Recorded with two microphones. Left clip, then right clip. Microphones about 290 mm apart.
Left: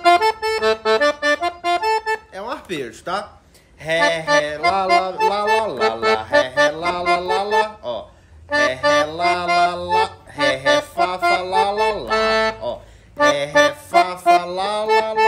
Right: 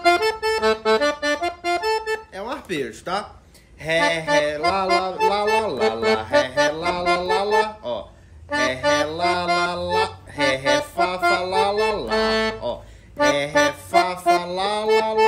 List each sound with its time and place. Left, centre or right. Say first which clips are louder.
0.0 s accordion: left 4 dB; centre
2.4 s speech: even; centre
3.8 s music: left 2 dB; centre